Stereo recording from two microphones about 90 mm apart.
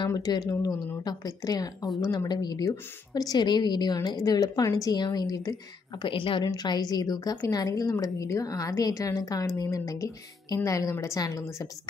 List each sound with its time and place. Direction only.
0.1 s a woman's voice: 45° left (ahead or behind)
6.0 s a woman's voice: 70° left (ahead or behind)
6.4 s a woman's voice: 50° left (ahead or behind)